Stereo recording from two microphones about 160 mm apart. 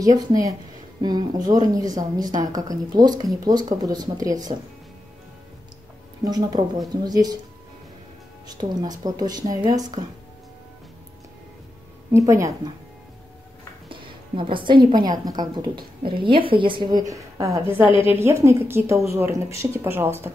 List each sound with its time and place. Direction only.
0.0 s a woman's voice: 25° right (ahead or behind)
6.2 s a woman's voice: 25° right (ahead or behind)
8.5 s a woman's voice: 25° right (ahead or behind)
12.1 s a woman's voice: 20° right (ahead or behind)
13.8 s a woman's voice: 30° right (ahead or behind); by 20.1 s 15° right (ahead or behind)